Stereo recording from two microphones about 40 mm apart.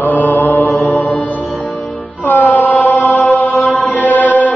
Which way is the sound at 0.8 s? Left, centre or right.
Left.